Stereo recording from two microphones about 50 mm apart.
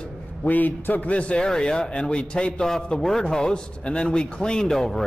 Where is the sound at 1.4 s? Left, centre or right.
Centre.